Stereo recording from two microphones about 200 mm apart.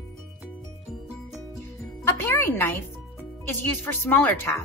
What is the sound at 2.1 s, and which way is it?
Speech, 15° left (ahead or behind).